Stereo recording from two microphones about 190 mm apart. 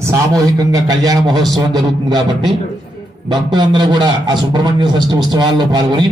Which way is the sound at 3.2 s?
25° right (ahead or behind).